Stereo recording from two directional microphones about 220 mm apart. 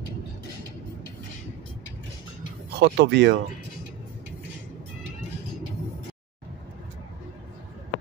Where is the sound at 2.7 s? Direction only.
50° right (ahead or behind).